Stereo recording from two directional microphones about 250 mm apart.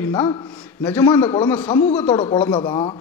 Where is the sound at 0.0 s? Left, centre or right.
Centre.